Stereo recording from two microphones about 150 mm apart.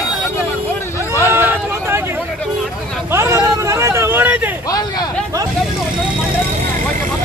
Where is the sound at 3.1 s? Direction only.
20° right (ahead or behind).